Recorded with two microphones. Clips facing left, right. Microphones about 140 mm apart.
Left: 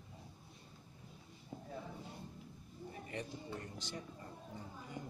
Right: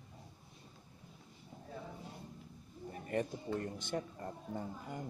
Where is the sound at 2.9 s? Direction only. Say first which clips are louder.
Right 8 dB; 50° right (ahead or behind).